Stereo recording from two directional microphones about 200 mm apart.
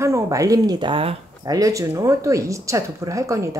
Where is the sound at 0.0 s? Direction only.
15° right (ahead or behind).